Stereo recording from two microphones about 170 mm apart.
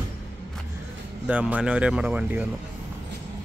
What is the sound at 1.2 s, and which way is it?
Speech, 5° right (ahead or behind).